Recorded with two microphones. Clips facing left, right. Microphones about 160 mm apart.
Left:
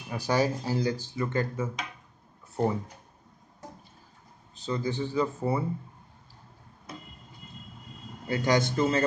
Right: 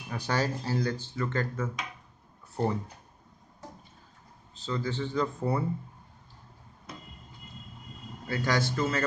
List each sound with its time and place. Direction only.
0.2 s speech: 10° left (ahead or behind)
2.5 s speech: 5° left (ahead or behind)
4.6 s speech: 15° left (ahead or behind)
8.3 s a man's voice: 20° left (ahead or behind)